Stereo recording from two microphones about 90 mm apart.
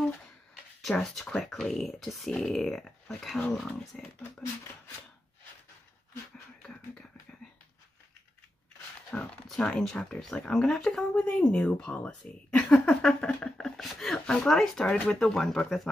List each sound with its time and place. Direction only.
0.8 s speech: 5° left (ahead or behind)
4.2 s speech: 35° left (ahead or behind)
6.6 s a sound: 10° left (ahead or behind)
9.1 s speech: 15° left (ahead or behind)